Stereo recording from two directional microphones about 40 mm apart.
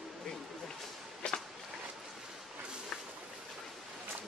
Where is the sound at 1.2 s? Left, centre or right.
Left.